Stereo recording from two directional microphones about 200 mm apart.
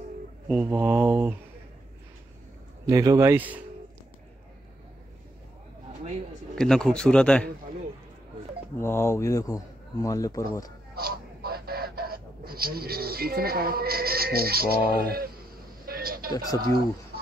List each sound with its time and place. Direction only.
0.5 s mantra: 10° right (ahead or behind)
2.9 s mantra: 15° right (ahead or behind)
6.5 s a man's voice: 5° left (ahead or behind)
8.7 s speech: 10° left (ahead or behind)
11.0 s a sound: 50° right (ahead or behind)
16.3 s speech: 20° left (ahead or behind)